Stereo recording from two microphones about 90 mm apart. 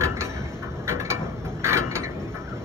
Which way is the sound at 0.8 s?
30° right (ahead or behind).